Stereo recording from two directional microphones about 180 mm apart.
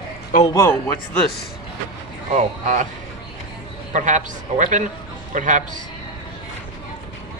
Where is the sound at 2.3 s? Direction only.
45° right (ahead or behind).